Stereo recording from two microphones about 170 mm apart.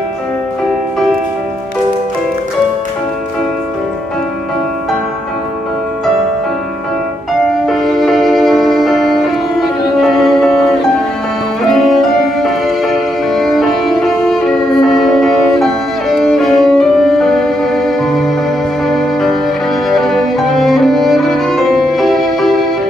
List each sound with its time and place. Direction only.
7.6 s music: centre (ahead or behind)